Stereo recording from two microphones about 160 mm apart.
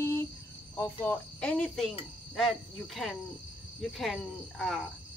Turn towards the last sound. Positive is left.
turn(degrees=0)  # may be behind; listen again after turning